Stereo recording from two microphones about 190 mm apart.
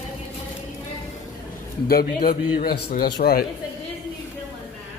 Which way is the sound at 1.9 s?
55° left (ahead or behind).